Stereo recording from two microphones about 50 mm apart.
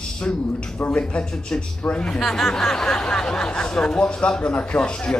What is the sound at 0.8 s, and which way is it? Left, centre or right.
A man's voice, centre.